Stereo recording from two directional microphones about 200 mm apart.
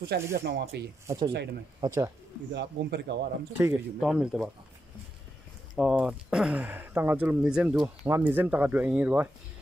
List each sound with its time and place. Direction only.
0.1 s speech: 55° right (ahead or behind)
1.0 s speech: 20° right (ahead or behind)
2.5 s speech: 60° right (ahead or behind)
3.5 s speech: 5° right (ahead or behind)
5.8 s speech: 5° right (ahead or behind)